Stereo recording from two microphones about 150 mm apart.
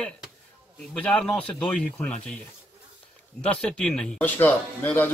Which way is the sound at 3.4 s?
5° left (ahead or behind).